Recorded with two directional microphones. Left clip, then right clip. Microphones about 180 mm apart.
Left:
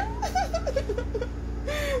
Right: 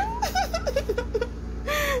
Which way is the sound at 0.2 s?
45° right (ahead or behind).